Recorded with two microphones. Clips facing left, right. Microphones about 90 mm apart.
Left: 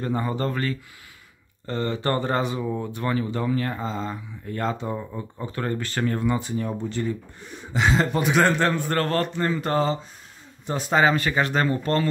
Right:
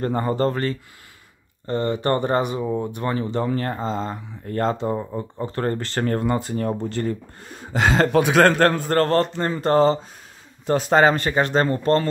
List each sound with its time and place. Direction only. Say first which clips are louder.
0.0 s speech: right 5 dB; 40° right (ahead or behind)
1.7 s speech: right 4 dB; 20° right (ahead or behind); by 8.1 s 45° right (ahead or behind)
8.1 s a man's voice: right 5 dB; 90° right
8.5 s a man's voice: right 5 dB; 55° right (ahead or behind)
8.8 s speech: right 5 dB; 35° right (ahead or behind)